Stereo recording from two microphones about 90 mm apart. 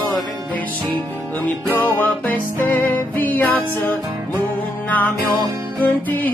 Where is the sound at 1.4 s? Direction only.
20° left (ahead or behind).